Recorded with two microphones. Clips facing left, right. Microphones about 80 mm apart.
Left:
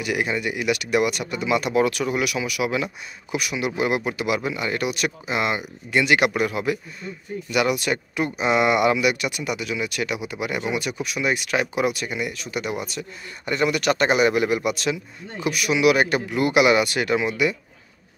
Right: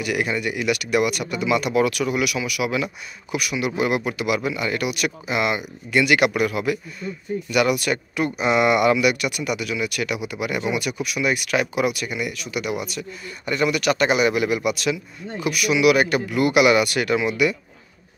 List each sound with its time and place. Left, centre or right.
0.0 s speech: left